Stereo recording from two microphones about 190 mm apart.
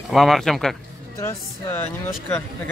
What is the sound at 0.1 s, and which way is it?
Speech, centre (ahead or behind).